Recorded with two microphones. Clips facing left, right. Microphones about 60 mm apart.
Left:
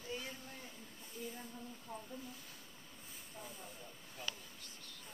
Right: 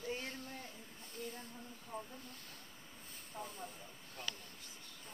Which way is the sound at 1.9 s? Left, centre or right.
Right.